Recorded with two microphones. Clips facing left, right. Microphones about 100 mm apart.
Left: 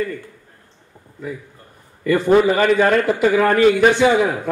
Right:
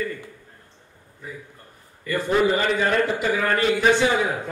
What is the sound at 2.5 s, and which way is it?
A man's voice, 60° left (ahead or behind).